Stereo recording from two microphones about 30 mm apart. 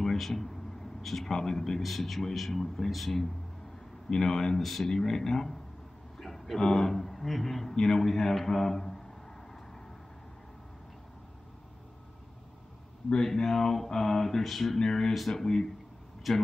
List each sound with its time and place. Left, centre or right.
0.0 s a sound: centre
1.2 s speech: centre
1.8 s a man's voice: centre
7.7 s speech: centre
13.1 s a man's voice: centre
14.8 s speech: centre
16.3 s a man's voice: centre